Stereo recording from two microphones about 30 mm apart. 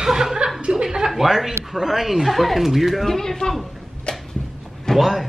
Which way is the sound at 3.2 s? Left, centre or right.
Centre.